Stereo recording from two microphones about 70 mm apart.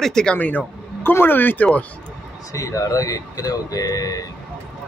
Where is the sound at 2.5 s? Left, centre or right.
Left.